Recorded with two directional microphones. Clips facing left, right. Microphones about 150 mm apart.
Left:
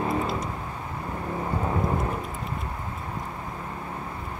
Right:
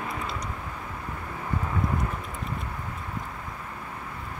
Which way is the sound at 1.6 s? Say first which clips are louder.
Left 3 dB; 30° left (ahead or behind).